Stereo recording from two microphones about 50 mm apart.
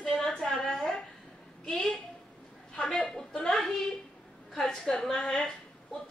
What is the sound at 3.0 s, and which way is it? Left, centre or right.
Speech, left.